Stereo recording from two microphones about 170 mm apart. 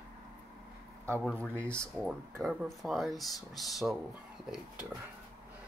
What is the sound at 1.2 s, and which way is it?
Speech, 10° left (ahead or behind).